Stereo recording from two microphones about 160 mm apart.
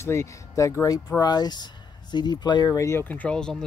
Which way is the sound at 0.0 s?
15° left (ahead or behind).